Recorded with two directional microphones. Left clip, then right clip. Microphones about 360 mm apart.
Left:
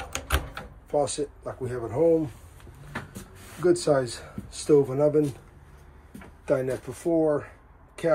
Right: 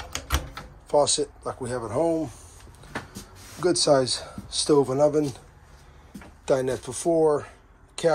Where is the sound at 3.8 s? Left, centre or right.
Centre.